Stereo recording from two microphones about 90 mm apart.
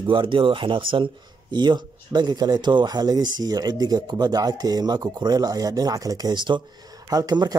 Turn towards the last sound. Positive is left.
turn(degrees=-45)  # may be behind; listen again after turning